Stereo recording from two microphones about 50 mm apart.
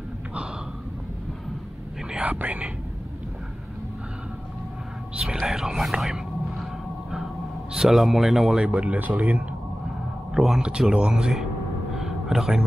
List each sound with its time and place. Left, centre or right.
2.1 s speech: right
5.1 s whispering: centre
5.4 s a sound: centre
7.7 s a man's voice: centre
8.6 s speech: right
10.3 s a man's voice: centre
11.9 s a sound: centre